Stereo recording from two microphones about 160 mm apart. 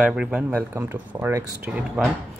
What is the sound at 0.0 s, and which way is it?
Speech, 5° right (ahead or behind).